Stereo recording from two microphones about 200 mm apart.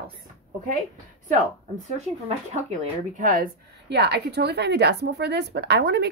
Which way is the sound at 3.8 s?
55° right (ahead or behind).